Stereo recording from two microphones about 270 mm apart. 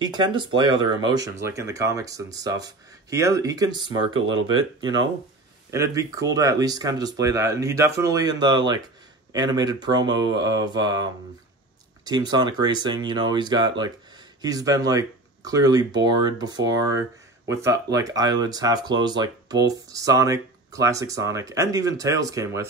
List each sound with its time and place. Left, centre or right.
0.0 s speech: centre